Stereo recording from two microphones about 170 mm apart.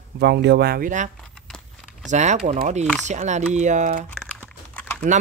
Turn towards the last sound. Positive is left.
turn(degrees=10)  # may be behind; listen again after turning